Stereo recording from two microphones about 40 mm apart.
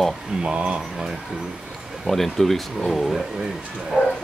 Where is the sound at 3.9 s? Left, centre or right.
Centre.